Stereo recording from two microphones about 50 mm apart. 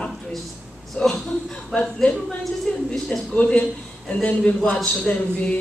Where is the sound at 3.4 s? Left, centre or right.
Left.